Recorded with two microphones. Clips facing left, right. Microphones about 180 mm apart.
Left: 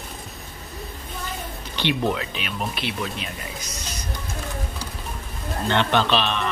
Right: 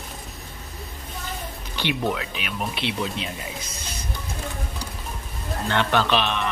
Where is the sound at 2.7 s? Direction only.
25° right (ahead or behind).